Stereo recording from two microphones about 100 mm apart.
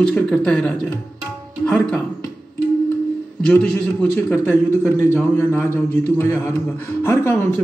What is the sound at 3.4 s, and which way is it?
A man's voice, 10° left (ahead or behind).